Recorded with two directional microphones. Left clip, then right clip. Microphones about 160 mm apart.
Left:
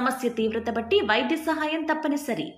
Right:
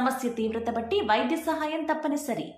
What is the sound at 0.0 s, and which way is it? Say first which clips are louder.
A woman's voice: left 2 dB; 10° left (ahead or behind).